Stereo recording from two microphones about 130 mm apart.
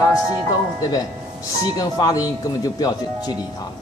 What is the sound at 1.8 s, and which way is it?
Speech, 30° left (ahead or behind).